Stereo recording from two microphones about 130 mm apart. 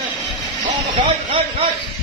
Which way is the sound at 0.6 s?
40° right (ahead or behind).